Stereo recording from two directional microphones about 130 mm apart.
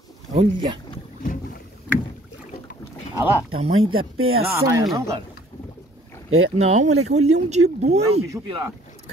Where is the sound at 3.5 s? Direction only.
45° right (ahead or behind).